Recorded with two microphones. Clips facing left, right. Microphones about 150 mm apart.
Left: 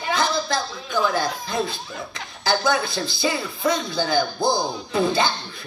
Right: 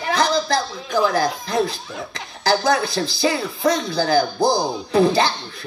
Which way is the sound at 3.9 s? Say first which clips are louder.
Right 4 dB; 35° right (ahead or behind).